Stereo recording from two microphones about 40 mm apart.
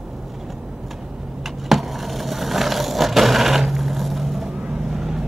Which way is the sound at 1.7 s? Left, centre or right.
Centre.